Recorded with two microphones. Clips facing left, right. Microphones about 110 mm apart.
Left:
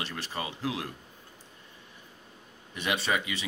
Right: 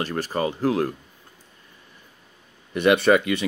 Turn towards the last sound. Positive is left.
turn(degrees=-60)  # may be behind; listen again after turning